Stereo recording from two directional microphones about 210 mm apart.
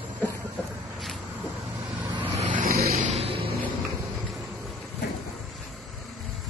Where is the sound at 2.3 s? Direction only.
40° right (ahead or behind).